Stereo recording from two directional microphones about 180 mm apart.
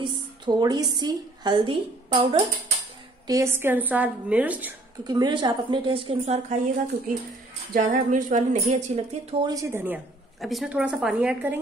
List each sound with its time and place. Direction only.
0.0 s a woman's voice: 25° right (ahead or behind)
3.3 s a woman's voice: 15° right (ahead or behind)
5.0 s a woman's voice: 20° right (ahead or behind)
7.7 s a woman's voice: 45° right (ahead or behind)
9.5 s a woman's voice: 15° right (ahead or behind)
10.4 s a woman's voice: centre (ahead or behind)